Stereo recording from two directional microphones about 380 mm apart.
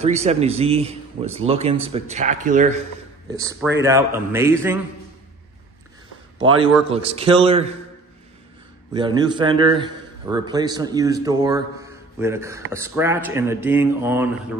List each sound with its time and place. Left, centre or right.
0.0 s speech: centre
3.3 s speech: centre
6.9 s speech: centre
8.9 s speech: centre